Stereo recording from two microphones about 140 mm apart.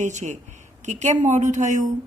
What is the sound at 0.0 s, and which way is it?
Speech, 60° right (ahead or behind).